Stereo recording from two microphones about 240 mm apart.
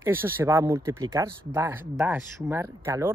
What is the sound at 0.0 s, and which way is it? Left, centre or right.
Speech, centre.